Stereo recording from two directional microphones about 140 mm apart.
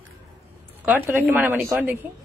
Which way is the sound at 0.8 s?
15° right (ahead or behind).